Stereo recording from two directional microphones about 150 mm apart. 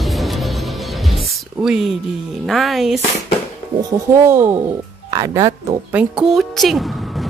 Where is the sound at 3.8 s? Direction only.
20° right (ahead or behind).